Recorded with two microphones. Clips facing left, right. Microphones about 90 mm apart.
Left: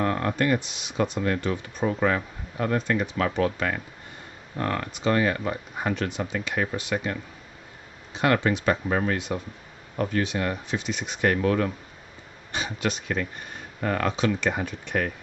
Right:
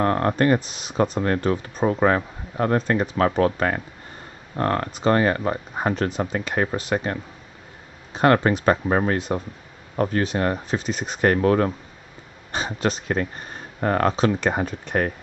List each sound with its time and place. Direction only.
0.0 s speech: 40° right (ahead or behind)